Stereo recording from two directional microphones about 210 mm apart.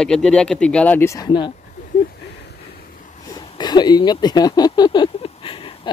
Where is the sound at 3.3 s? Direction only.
25° left (ahead or behind).